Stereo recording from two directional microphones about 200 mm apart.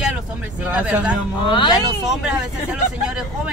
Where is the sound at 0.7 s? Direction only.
5° right (ahead or behind).